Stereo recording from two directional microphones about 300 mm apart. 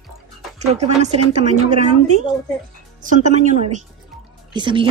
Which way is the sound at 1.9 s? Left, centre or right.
Right.